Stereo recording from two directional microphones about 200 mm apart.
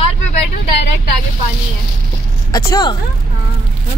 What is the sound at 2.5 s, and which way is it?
Speech, 20° left (ahead or behind).